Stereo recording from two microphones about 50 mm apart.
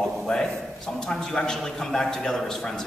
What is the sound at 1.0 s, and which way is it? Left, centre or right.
A man's voice, centre.